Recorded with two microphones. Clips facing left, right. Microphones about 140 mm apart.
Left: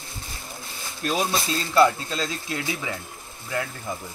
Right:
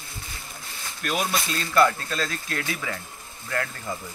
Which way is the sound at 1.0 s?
30° left (ahead or behind).